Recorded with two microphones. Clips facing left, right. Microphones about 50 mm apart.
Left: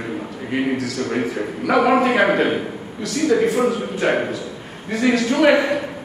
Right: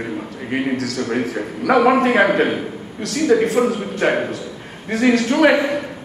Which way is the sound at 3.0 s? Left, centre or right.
Right.